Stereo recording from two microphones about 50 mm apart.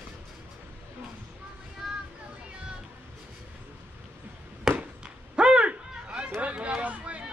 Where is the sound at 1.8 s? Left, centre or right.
Centre.